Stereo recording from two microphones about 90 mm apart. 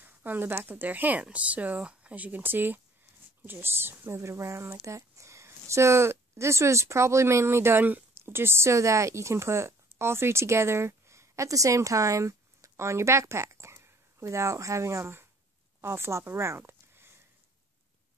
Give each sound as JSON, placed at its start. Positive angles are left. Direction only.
{"t": 0.0, "sound": "a woman's voice", "side_deg": -20}